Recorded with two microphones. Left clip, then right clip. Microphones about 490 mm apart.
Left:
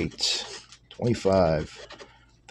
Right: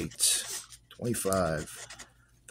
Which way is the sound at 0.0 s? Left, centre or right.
Right.